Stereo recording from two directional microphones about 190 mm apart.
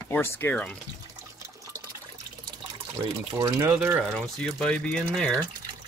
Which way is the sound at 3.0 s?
20° right (ahead or behind).